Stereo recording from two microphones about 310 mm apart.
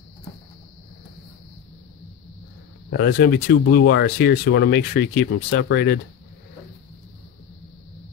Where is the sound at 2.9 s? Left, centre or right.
Left.